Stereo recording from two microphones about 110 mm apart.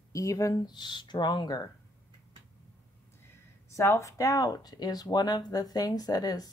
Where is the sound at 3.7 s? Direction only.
25° left (ahead or behind).